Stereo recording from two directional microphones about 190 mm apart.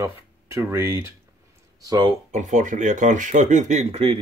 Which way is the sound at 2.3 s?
40° right (ahead or behind).